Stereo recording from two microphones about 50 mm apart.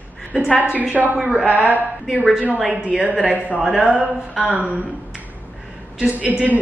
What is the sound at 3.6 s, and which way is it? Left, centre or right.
Speech, centre.